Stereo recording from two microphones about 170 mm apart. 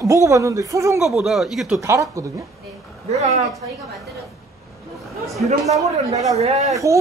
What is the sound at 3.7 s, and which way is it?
Speech, centre (ahead or behind).